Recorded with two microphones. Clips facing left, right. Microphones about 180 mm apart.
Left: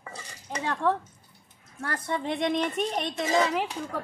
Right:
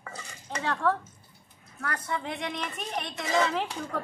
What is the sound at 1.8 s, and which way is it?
Speech, 30° left (ahead or behind).